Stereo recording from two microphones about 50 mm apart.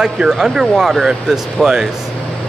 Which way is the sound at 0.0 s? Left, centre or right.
Centre.